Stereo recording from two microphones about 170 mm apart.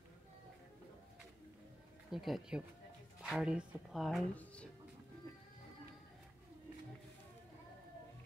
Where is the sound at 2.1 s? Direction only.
Centre (ahead or behind).